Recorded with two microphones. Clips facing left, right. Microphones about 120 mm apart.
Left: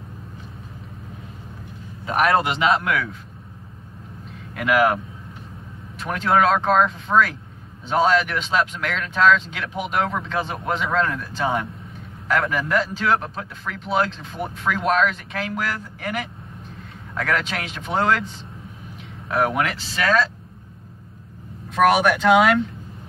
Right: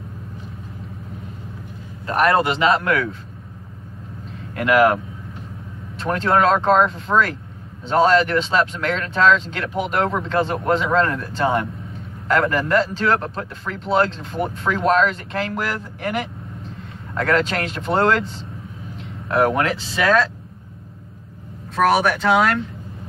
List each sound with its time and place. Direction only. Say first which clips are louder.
2.0 s speech: right 2 dB; 5° left (ahead or behind)
4.6 s speech: right 3 dB; centre (ahead or behind)
7.9 s speech: right 3 dB; 5° left (ahead or behind)
10.4 s speech: right 7 dB; 80° right
10.7 s speech: right 3 dB; centre (ahead or behind)
18.9 s a sound: right 3 dB; centre (ahead or behind)
21.7 s speech: even; centre (ahead or behind)